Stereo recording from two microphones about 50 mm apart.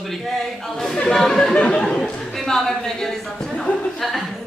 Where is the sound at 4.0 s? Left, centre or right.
Centre.